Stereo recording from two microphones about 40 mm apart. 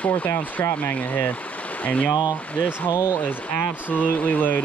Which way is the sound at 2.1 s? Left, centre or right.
Right.